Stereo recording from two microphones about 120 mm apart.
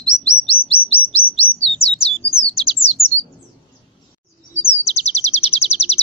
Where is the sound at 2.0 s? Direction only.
55° left (ahead or behind).